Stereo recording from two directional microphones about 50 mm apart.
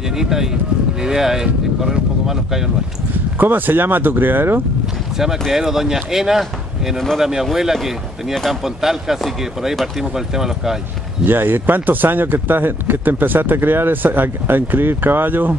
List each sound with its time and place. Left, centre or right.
0.1 s speech: centre
3.3 s speech: right
5.1 s speech: centre
11.2 s speech: right